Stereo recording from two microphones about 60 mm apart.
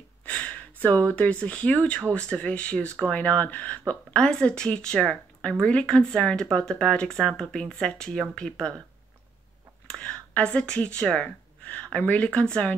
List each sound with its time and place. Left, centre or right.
0.2 s speech: left
4.2 s speech: centre
9.9 s gasp: centre
12.0 s speech: left